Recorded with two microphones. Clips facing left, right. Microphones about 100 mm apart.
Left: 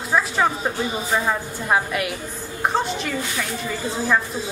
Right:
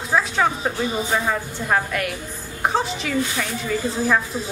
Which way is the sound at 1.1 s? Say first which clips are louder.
Even; 10° left (ahead or behind).